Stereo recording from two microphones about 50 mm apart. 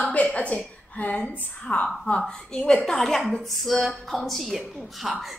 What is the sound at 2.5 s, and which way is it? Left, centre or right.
Speech, centre.